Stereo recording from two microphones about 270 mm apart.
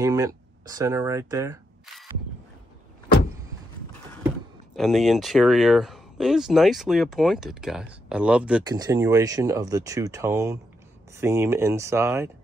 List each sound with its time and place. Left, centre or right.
0.0 s speech: centre
4.7 s speech: centre